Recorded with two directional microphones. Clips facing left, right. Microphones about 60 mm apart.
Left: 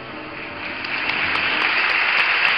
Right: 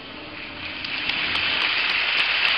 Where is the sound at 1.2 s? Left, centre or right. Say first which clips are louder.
Left 4 dB; left.